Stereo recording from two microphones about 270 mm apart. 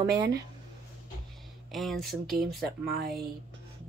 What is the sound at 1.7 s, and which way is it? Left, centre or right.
Speech, centre.